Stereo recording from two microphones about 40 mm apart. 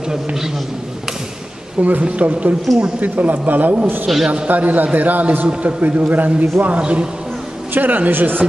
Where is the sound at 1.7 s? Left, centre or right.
Right.